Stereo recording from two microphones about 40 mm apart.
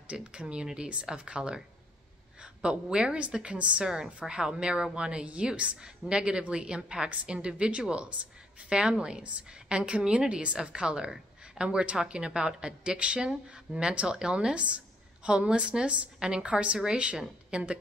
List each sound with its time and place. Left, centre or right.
0.1 s a woman's voice: right
2.6 s speech: right
3.8 s a woman's voice: centre
16.2 s a woman's voice: centre